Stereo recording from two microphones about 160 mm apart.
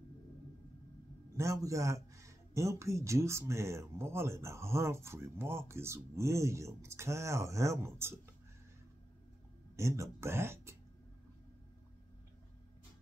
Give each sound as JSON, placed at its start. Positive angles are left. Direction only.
{"t": 1.3, "sound": "a man's voice", "side_deg": -20}
{"t": 9.8, "sound": "a man's voice", "side_deg": -20}